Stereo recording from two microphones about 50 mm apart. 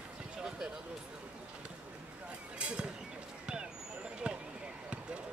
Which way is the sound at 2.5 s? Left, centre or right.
Right.